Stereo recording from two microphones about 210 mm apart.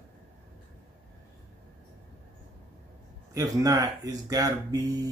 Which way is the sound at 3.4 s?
15° right (ahead or behind).